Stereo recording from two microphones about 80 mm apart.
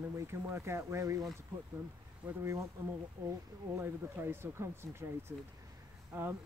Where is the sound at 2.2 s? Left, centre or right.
Centre.